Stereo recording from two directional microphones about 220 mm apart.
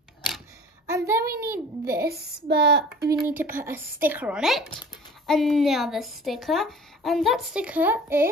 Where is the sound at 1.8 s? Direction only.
45° right (ahead or behind).